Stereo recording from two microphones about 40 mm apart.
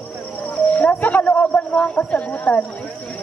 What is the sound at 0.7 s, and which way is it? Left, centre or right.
Speech, left.